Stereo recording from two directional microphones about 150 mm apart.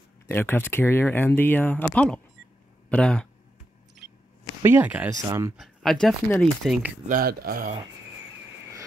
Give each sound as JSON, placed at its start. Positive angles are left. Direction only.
{"t": 0.3, "sound": "speech", "side_deg": 15}
{"t": 4.6, "sound": "speech", "side_deg": -15}
{"t": 5.6, "sound": "speech", "side_deg": 0}
{"t": 7.1, "sound": "speech", "side_deg": -75}